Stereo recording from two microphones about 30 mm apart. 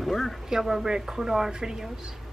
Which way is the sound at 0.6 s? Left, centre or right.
Centre.